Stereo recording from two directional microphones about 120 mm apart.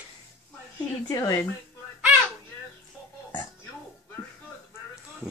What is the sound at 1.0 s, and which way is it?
Speech, 25° left (ahead or behind).